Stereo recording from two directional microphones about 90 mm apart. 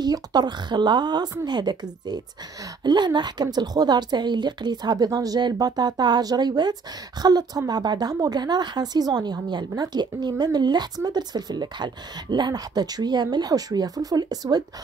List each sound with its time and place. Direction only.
0.0 s a woman's voice: 50° right (ahead or behind)